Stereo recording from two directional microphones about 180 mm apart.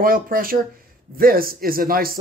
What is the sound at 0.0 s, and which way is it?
Speech, 55° right (ahead or behind).